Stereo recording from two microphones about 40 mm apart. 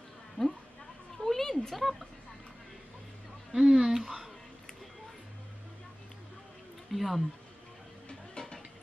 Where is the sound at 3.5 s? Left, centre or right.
Centre.